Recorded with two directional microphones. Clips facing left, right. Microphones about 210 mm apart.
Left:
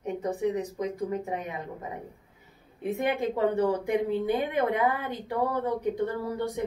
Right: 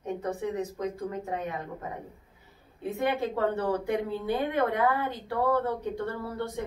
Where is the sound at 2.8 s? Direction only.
15° left (ahead or behind).